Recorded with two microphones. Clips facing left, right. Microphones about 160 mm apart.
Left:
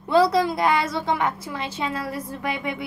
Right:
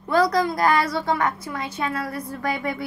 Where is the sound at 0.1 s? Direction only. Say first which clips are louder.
Left 1 dB; 25° left (ahead or behind).